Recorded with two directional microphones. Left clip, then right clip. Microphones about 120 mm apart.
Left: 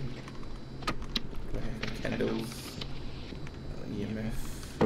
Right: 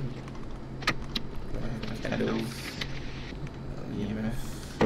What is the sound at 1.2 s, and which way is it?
Typing, centre (ahead or behind).